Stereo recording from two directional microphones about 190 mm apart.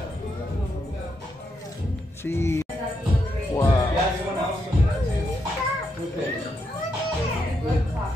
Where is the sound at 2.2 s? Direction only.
15° left (ahead or behind).